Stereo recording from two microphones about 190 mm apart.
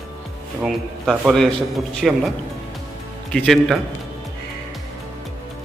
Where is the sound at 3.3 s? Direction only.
5° left (ahead or behind).